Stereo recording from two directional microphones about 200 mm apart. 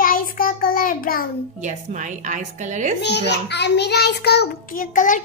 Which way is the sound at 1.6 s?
40° right (ahead or behind).